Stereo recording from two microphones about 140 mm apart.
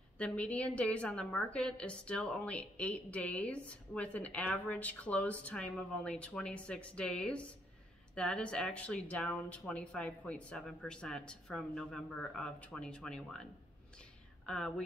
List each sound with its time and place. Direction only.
0.2 s a woman's voice: 10° left (ahead or behind)